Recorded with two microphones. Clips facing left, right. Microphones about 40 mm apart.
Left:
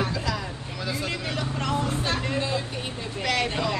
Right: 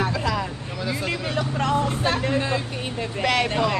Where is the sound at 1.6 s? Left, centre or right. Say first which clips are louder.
Right 5 dB; right.